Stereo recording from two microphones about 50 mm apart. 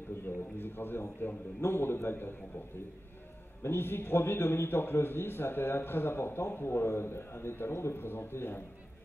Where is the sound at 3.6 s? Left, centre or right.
Left.